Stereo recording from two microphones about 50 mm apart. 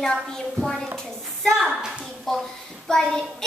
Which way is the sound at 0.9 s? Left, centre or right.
Centre.